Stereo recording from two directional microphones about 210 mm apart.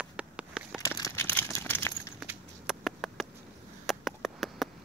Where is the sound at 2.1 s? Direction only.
5° right (ahead or behind).